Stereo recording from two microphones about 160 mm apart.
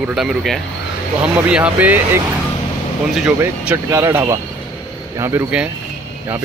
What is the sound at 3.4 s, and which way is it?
Speech, 10° right (ahead or behind).